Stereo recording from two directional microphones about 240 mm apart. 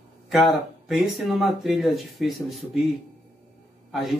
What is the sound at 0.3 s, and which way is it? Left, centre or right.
Speech, centre.